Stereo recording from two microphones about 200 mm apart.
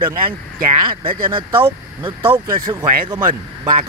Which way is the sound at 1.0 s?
25° right (ahead or behind).